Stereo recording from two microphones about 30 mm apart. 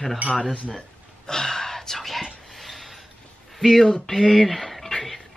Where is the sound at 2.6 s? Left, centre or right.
Centre.